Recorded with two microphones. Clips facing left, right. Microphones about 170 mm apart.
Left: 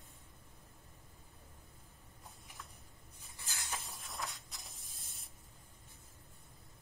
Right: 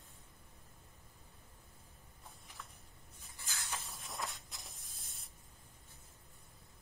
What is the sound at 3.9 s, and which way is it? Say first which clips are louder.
Spray: right 1 dB; centre (ahead or behind).